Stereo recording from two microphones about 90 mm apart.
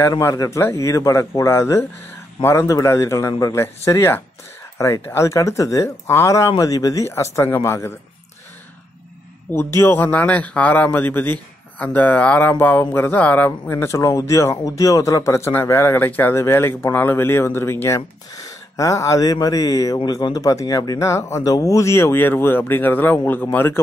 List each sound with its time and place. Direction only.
0.2 s speech: 30° left (ahead or behind)
9.8 s speech: 25° left (ahead or behind)